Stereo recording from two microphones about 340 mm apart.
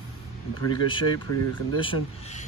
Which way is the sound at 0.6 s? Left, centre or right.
Centre.